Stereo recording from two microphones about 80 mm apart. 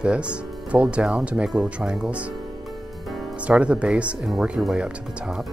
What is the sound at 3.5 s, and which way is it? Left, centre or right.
Speech, centre.